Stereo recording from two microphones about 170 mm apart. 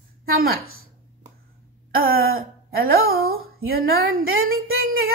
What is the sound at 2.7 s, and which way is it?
Speech, 60° right (ahead or behind).